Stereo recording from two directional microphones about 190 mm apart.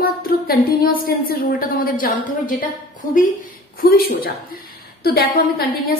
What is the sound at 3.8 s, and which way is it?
A woman's voice, 50° left (ahead or behind).